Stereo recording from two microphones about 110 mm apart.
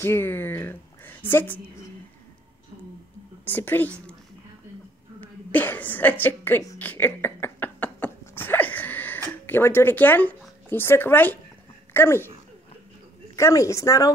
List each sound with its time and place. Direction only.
0.0 s a woman's voice: 20° left (ahead or behind)
3.5 s speech: 15° left (ahead or behind)
5.2 s a woman's voice: 15° left (ahead or behind)
6.8 s a sound: 15° left (ahead or behind)
9.5 s a woman's voice: 20° left (ahead or behind)
13.4 s a woman's voice: 25° left (ahead or behind)